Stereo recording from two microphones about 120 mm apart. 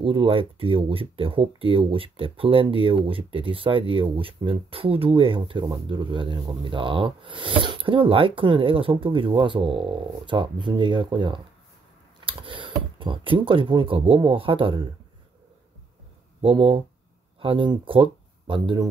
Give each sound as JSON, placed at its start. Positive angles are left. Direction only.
{"t": 0.0, "sound": "speech", "side_deg": -50}
{"t": 16.3, "sound": "speech", "side_deg": -50}